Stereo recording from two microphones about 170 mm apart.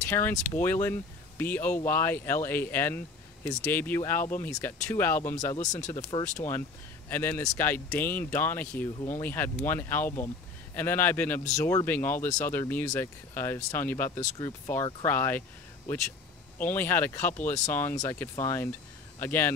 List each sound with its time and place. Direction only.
0.0 s speech: 15° left (ahead or behind)
16.5 s speech: 10° left (ahead or behind)